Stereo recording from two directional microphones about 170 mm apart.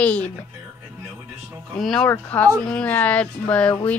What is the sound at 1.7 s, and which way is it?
Speech, 5° left (ahead or behind).